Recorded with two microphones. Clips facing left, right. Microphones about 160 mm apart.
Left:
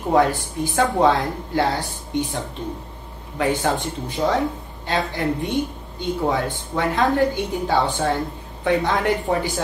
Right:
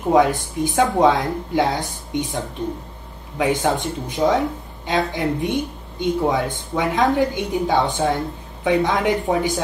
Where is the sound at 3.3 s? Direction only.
5° right (ahead or behind).